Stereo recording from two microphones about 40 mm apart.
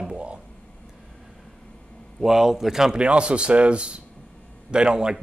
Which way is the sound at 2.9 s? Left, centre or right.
Right.